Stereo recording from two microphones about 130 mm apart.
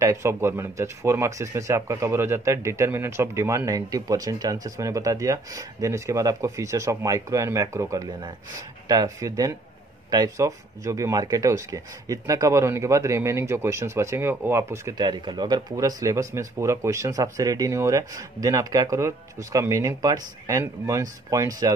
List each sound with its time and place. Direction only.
0.0 s speech: 20° right (ahead or behind)
15.0 s speech: 35° right (ahead or behind)